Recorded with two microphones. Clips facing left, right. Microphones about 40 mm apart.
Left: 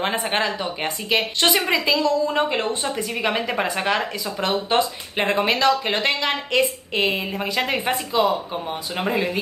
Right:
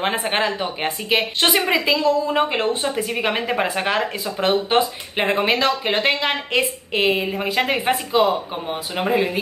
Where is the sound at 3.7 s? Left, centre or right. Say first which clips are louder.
Right 1 dB; centre.